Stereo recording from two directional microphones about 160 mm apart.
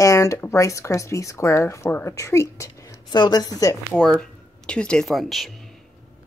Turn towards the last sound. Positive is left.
turn(degrees=0)  # may be behind; listen again after turning